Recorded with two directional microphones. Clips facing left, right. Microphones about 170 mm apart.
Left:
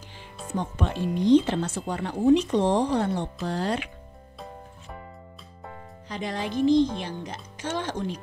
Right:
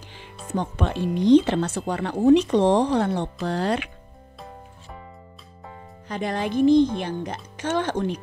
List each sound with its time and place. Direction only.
0.6 s speech: 75° right (ahead or behind)
6.0 s speech: 55° right (ahead or behind)